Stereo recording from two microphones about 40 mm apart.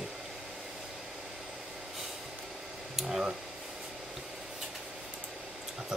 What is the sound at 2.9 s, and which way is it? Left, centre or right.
Speech, centre.